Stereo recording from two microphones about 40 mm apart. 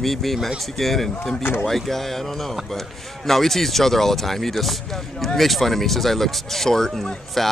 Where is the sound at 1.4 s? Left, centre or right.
Left.